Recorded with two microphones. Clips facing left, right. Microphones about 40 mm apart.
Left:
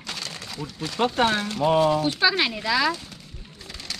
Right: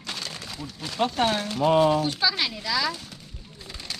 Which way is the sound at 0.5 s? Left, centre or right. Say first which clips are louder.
Left 3 dB; left.